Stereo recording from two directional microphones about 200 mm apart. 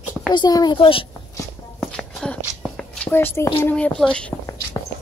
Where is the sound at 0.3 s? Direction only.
20° left (ahead or behind).